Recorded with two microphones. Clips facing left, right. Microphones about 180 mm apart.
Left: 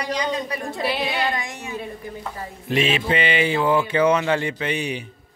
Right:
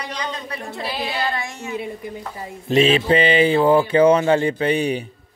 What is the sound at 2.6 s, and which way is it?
Mantra, 30° right (ahead or behind).